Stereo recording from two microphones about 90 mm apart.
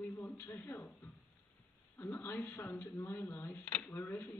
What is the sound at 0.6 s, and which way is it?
Speech, 20° left (ahead or behind).